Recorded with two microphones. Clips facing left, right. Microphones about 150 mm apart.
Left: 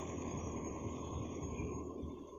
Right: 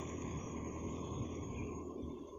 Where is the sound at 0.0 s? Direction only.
15° left (ahead or behind).